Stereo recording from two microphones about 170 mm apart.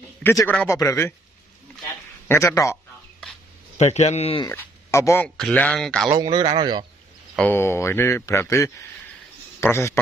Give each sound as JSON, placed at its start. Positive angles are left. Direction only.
{"t": 0.2, "sound": "a man's voice", "side_deg": 15}
{"t": 2.2, "sound": "a man's voice", "side_deg": 15}
{"t": 3.7, "sound": "a man's voice", "side_deg": 40}
{"t": 4.5, "sound": "a man's voice", "side_deg": 15}
{"t": 6.0, "sound": "a man's voice", "side_deg": -20}
{"t": 7.3, "sound": "a man's voice", "side_deg": 10}